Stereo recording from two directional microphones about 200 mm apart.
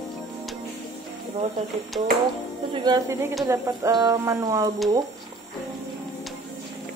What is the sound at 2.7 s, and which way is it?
Speech, 20° right (ahead or behind).